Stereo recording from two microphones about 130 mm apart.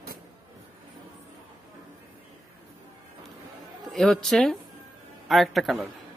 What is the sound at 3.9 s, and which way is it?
Speech, centre (ahead or behind).